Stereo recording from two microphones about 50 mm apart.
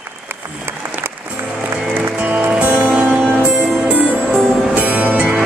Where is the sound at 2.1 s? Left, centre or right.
Right.